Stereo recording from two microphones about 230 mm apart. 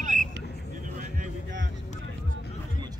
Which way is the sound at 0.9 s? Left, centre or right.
Right.